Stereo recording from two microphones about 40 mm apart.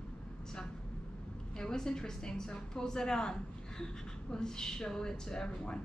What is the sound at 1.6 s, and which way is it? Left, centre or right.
A woman's voice, centre.